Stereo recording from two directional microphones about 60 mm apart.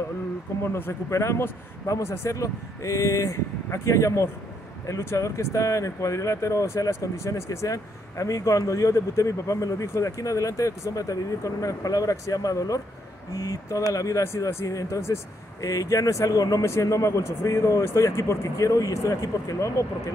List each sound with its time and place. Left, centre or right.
1.1 s speech: left
14.2 s speech: left
16.6 s speech: left